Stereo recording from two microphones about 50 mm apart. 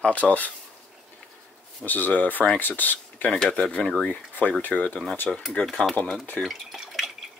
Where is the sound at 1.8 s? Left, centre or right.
Left.